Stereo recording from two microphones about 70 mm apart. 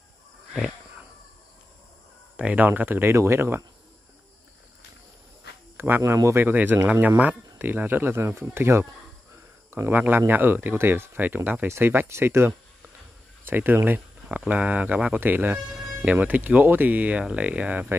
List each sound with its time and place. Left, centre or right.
2.3 s speech: centre; by 3.6 s right
5.8 s speech: right
9.7 s a sound: right
9.9 s speech: right